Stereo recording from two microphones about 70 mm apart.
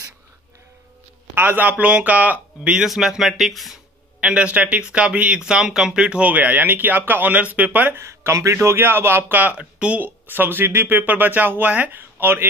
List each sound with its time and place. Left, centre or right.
1.3 s speech: right
2.9 s speech: centre
4.2 s speech: centre
7.9 s speech: right
8.6 s speech: right
9.4 s speech: right